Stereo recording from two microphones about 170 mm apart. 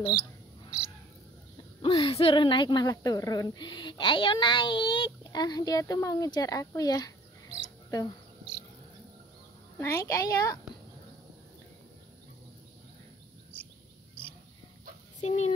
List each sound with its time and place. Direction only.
0.7 s crow: 5° right (ahead or behind)
1.8 s a woman's voice: 35° left (ahead or behind)
9.8 s a child's voice: 15° left (ahead or behind)
15.1 s speech: 40° left (ahead or behind)